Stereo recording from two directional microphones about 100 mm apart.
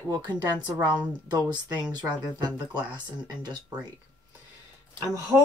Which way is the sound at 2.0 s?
45° right (ahead or behind).